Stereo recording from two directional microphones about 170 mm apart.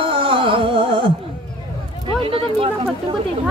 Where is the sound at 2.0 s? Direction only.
30° right (ahead or behind).